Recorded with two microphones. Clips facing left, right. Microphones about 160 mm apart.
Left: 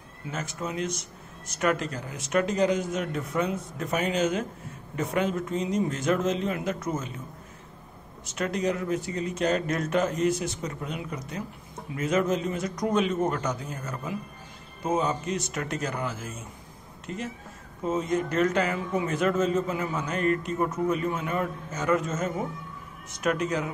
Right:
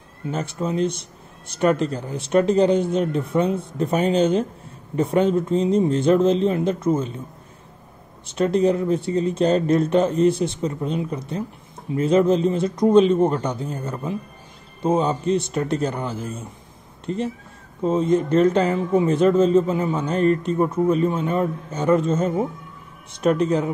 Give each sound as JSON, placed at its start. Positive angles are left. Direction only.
{"t": 0.3, "sound": "speech", "side_deg": -30}
{"t": 8.4, "sound": "speech", "side_deg": -30}